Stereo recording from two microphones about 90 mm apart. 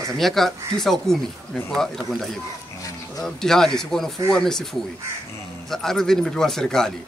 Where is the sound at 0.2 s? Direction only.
5° left (ahead or behind).